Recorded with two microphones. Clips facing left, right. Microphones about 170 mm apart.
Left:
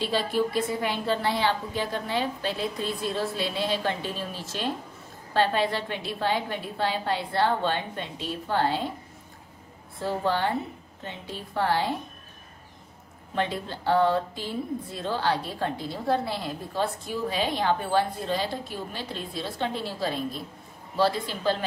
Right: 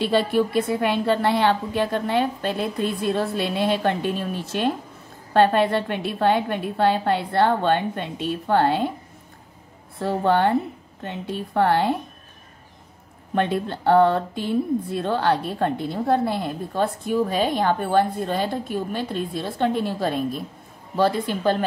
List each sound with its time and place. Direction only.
0.0 s a woman's voice: 60° right (ahead or behind)
9.9 s a woman's voice: 60° right (ahead or behind)
13.3 s a woman's voice: 55° right (ahead or behind)